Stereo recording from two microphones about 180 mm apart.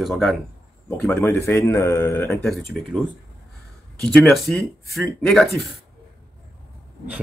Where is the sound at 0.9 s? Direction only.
10° left (ahead or behind).